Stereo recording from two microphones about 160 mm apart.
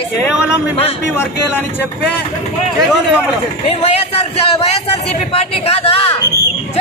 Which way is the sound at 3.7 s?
40° left (ahead or behind).